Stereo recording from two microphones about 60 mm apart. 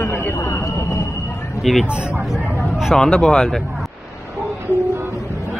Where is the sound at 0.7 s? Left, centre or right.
Left.